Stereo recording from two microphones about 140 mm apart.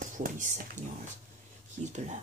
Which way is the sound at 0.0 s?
70° right (ahead or behind).